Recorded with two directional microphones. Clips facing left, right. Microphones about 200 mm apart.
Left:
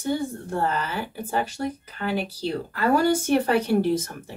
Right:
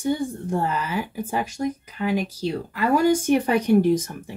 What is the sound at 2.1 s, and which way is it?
Speech, 35° left (ahead or behind).